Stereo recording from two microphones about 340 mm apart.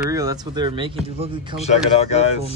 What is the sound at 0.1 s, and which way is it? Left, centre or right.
Speech, centre.